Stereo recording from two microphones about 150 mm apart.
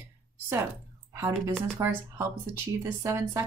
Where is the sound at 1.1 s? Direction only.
20° right (ahead or behind).